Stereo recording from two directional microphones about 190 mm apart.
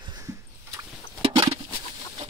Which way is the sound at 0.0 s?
20° right (ahead or behind).